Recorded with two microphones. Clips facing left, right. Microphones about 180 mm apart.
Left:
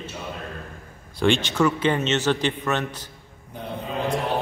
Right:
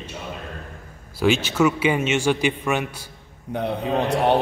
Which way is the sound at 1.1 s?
5° right (ahead or behind).